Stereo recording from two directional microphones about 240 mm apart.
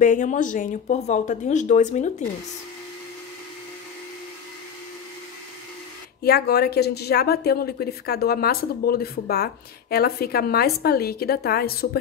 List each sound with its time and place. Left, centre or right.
0.0 s speech: left
6.2 s speech: left